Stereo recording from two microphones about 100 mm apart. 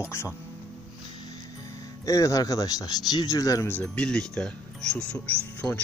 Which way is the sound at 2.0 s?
35° left (ahead or behind).